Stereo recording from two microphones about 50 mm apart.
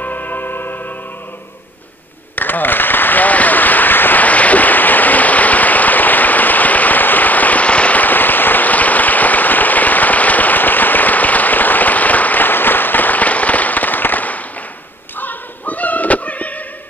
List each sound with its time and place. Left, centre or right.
0.0 s music: left
2.3 s applause: left
15.1 s a sound: left